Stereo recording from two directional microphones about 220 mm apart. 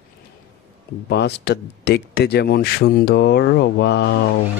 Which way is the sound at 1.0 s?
50° left (ahead or behind).